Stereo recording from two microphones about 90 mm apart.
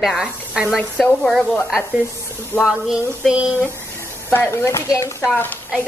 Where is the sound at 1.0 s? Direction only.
5° left (ahead or behind).